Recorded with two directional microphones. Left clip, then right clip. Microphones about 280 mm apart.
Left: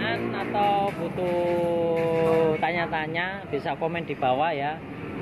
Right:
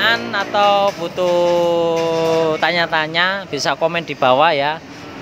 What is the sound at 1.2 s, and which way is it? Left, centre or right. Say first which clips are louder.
Speech: right 10 dB; right.